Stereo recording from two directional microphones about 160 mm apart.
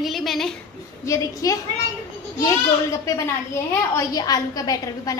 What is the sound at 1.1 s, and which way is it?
Speech, 20° left (ahead or behind).